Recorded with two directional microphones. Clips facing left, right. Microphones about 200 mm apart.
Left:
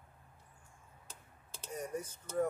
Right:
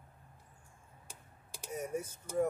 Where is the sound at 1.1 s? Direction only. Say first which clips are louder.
Right 2 dB; 10° right (ahead or behind).